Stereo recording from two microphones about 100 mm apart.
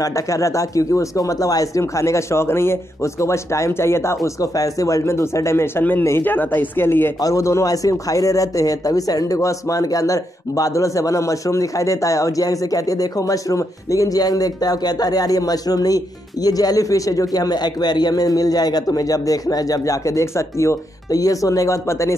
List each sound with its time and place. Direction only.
0.0 s speech: 30° left (ahead or behind)
7.2 s a man's voice: 35° left (ahead or behind)